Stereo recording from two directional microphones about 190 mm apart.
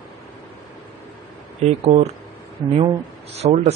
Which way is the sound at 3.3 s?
35° right (ahead or behind).